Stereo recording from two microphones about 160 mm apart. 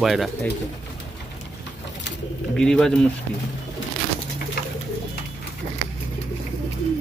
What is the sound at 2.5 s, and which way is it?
Speech, 5° left (ahead or behind).